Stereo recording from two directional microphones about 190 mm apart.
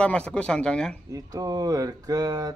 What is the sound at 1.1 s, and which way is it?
Speech, 20° right (ahead or behind).